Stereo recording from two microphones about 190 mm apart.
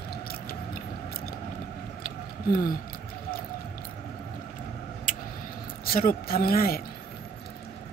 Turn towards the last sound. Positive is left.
turn(degrees=50)  # may be behind; listen again after turning